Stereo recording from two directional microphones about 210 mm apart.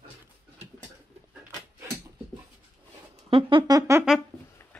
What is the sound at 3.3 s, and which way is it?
Speech, 25° right (ahead or behind).